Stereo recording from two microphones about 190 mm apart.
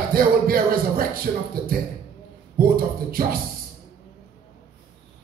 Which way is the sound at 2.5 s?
50° right (ahead or behind).